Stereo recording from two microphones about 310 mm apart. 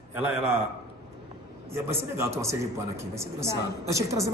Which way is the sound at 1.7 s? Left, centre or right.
Centre.